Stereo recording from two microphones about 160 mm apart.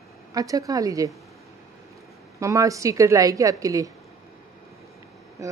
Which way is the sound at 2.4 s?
20° right (ahead or behind).